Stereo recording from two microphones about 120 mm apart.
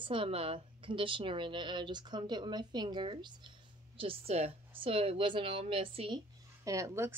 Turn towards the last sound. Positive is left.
turn(degrees=-25)  # may be behind; listen again after turning